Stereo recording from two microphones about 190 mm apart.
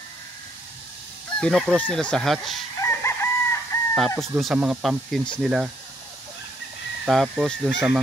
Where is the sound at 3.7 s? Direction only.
20° left (ahead or behind).